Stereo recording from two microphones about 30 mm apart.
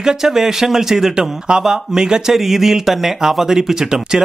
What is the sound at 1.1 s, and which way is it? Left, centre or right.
Speech, right.